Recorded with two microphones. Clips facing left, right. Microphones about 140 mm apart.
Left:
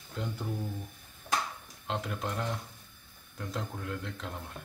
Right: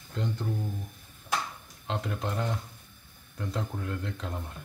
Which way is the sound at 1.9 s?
Centre (ahead or behind).